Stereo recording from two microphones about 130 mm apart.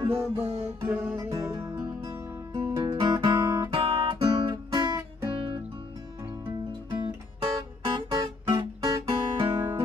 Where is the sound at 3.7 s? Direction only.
50° right (ahead or behind).